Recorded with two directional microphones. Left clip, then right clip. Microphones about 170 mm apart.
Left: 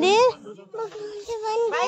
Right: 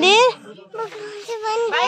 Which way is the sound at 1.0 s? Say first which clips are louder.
Right 4 dB; 10° left (ahead or behind).